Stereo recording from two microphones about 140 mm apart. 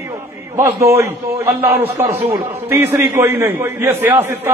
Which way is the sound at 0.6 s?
20° right (ahead or behind).